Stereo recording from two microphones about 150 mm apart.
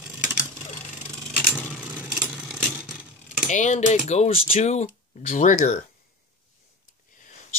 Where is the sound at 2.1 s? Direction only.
5° right (ahead or behind).